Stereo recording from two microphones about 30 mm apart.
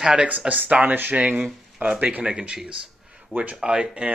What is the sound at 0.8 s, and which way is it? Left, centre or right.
Speech, right.